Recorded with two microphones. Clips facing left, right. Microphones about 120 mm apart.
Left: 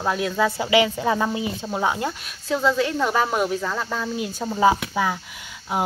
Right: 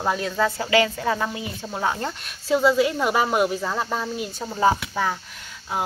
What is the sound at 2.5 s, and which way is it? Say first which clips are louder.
A woman's voice: right 2 dB; 10° right (ahead or behind).